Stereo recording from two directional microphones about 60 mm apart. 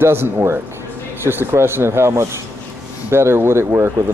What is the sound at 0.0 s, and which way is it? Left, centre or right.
Speech, right.